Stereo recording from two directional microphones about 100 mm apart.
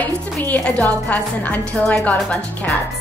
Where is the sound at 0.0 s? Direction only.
15° left (ahead or behind).